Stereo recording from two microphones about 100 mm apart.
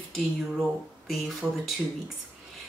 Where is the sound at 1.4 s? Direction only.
15° right (ahead or behind).